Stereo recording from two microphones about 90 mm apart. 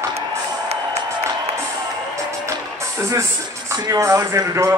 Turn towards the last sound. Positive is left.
turn(degrees=-35)  # may be behind; listen again after turning